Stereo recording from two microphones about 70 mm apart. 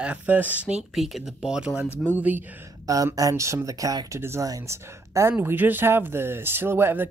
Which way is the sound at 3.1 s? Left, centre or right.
Right.